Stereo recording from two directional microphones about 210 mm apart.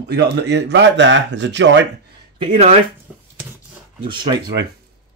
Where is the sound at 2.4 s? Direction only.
25° right (ahead or behind).